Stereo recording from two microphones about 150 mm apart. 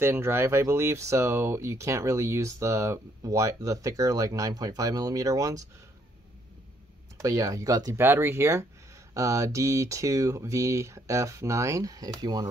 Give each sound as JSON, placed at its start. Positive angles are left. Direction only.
{"t": 0.0, "sound": "speech", "side_deg": -15}
{"t": 7.2, "sound": "speech", "side_deg": -20}